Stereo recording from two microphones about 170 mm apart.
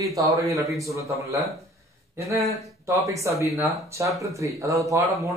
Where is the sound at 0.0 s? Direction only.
20° right (ahead or behind).